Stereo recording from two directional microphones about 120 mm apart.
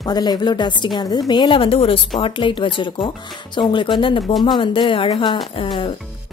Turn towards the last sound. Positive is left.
turn(degrees=45)  # may be behind; listen again after turning